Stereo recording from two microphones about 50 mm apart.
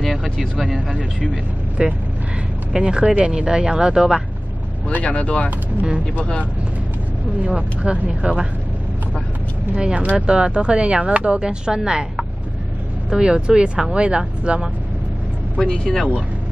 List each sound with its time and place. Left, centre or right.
0.0 s speech: centre
1.3 s speech: right
5.0 s speech: left
5.8 s speech: right
6.1 s speech: left
7.4 s speech: right
9.8 s speech: right
15.7 s speech: centre